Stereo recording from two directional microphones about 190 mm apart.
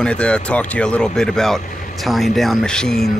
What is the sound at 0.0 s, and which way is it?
Speech, 5° left (ahead or behind).